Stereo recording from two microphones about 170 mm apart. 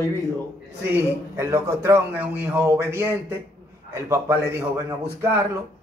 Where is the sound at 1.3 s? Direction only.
15° right (ahead or behind).